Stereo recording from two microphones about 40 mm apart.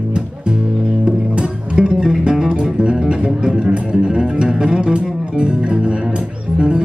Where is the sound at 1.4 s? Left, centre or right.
Right.